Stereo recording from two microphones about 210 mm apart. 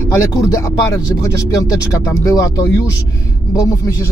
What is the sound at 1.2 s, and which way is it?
Speech, 15° left (ahead or behind).